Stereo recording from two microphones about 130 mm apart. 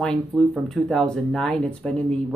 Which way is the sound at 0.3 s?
Centre (ahead or behind).